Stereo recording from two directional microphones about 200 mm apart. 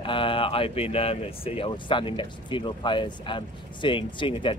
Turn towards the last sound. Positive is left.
turn(degrees=25)  # may be behind; listen again after turning